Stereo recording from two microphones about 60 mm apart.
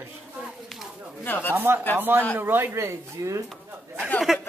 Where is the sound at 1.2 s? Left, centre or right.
Left.